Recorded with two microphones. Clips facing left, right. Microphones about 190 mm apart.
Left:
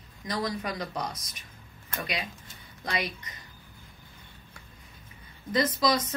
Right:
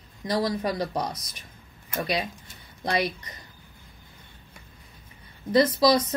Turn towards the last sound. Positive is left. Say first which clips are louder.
# right 5 dB
turn(degrees=-35)  # may be behind; listen again after turning